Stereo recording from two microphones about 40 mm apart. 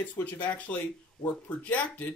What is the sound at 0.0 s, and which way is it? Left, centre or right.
Speech, left.